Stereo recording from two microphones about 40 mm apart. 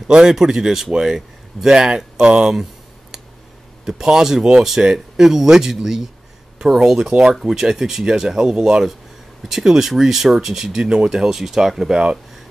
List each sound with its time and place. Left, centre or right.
0.1 s speech: centre
3.8 s speech: centre
7.4 s speech: centre
11.9 s speech: right